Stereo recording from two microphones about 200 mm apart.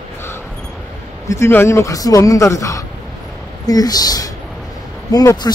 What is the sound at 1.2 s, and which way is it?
Speech, 15° left (ahead or behind).